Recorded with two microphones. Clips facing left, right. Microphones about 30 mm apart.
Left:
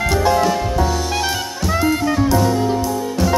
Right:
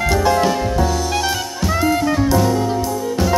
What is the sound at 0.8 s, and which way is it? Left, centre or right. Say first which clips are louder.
Jazz: even; centre.